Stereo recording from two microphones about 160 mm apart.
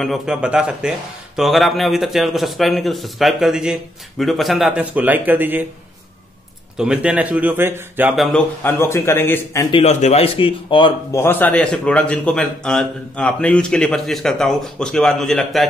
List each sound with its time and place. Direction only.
0.0 s a man's voice: 5° right (ahead or behind)
6.8 s speech: 5° right (ahead or behind)
8.2 s a man's voice: 5° left (ahead or behind)
8.7 s a man's voice: 15° left (ahead or behind)
9.7 s speech: 40° left (ahead or behind)
11.1 s a man's voice: 15° left (ahead or behind)